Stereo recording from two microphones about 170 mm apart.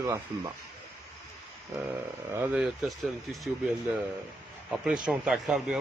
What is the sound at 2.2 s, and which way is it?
A man's voice, 10° right (ahead or behind).